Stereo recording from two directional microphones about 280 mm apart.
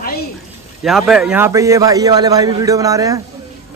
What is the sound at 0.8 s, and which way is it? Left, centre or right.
A man's voice, centre.